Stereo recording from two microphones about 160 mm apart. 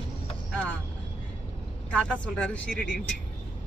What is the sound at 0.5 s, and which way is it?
Vehicle, 5° left (ahead or behind).